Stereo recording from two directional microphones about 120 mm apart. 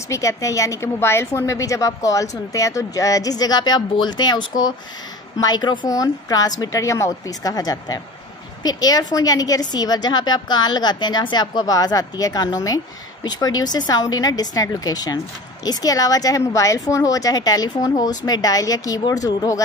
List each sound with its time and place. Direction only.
0.1 s a woman's voice: 25° left (ahead or behind)